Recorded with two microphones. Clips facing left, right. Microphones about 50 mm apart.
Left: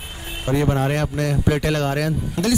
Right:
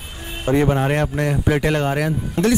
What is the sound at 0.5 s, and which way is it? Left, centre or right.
Speech, right.